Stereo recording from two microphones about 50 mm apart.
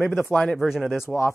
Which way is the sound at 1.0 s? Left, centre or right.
Left.